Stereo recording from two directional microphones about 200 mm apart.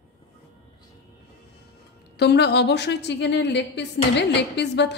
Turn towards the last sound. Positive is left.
turn(degrees=60)  # may be behind; listen again after turning